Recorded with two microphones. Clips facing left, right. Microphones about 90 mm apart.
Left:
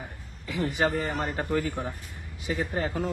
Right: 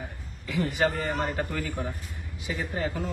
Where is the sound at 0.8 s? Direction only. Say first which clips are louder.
Even; 20° left (ahead or behind).